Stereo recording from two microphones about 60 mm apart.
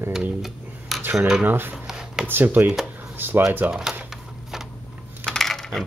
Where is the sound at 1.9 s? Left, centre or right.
Centre.